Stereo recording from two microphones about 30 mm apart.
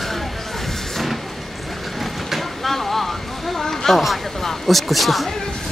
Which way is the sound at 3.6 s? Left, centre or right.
Centre.